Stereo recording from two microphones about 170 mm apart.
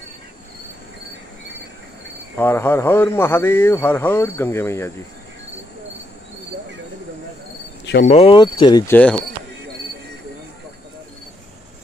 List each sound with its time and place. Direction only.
2.3 s a man's voice: 15° left (ahead or behind)
8.0 s speech: 35° left (ahead or behind)
8.8 s a man's voice: 10° left (ahead or behind)